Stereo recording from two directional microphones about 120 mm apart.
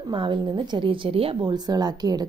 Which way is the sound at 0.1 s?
45° right (ahead or behind).